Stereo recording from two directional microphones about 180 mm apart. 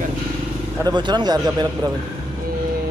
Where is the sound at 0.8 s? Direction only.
25° right (ahead or behind).